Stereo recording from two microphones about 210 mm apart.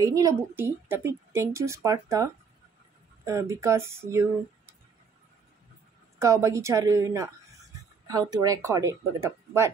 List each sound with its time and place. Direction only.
0.0 s a woman's voice: 15° right (ahead or behind)
3.3 s a woman's voice: 15° right (ahead or behind)
6.1 s a woman's voice: 15° right (ahead or behind)